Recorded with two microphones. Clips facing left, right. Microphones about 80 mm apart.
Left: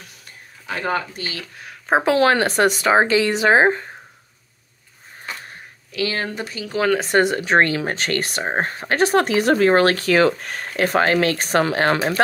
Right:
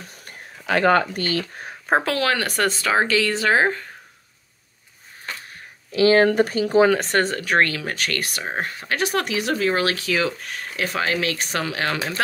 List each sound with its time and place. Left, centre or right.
0.7 s speech: right
2.0 s speech: left
5.9 s a sound: right
6.1 s speech: right
7.1 s speech: centre; by 12.0 s left